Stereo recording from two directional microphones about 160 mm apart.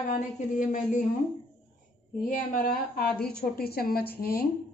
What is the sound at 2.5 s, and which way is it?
A woman's voice, 75° left (ahead or behind).